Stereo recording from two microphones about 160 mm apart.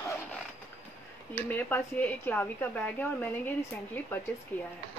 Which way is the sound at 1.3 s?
10° left (ahead or behind).